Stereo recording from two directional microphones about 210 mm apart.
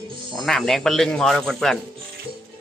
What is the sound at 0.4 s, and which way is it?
A man's voice, centre (ahead or behind).